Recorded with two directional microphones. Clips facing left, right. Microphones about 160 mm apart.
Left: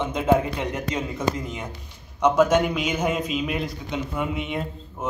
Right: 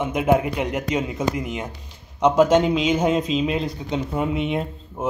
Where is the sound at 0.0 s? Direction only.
15° right (ahead or behind).